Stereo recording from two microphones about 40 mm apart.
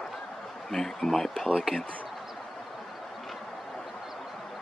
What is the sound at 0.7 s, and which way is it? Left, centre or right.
Speech, centre.